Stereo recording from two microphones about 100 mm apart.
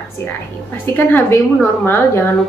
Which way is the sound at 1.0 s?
25° left (ahead or behind).